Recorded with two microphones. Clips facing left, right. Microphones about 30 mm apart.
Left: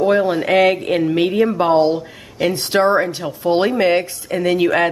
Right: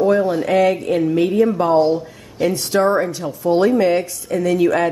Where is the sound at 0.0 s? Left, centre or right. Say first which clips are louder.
Even; left.